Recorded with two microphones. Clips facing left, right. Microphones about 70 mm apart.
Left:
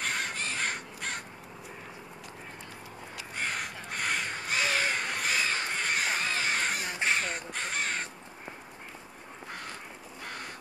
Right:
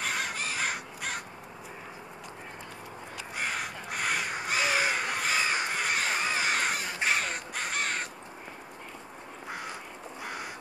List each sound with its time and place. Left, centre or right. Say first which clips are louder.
0.0 s crow: right 1 dB; centre
3.3 s crow: right 1 dB; centre
6.2 s crow: right 2 dB; centre
6.5 s crow: right 1 dB; centre
10.2 s crow: right 3 dB; centre